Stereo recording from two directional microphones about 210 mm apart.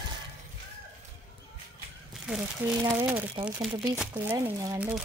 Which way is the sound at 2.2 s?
Centre (ahead or behind).